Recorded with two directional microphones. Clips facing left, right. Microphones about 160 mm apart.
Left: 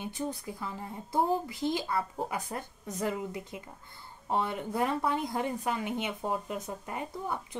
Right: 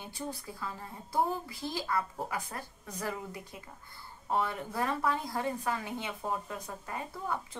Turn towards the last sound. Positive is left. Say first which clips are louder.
# left 1 dB
turn(degrees=20)  # may be behind; listen again after turning